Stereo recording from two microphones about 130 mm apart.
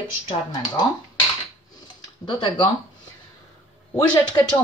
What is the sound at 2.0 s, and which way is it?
Speech, 35° left (ahead or behind).